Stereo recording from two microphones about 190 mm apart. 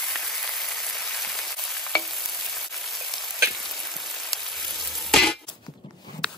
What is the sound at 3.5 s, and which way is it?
Frying, centre (ahead or behind).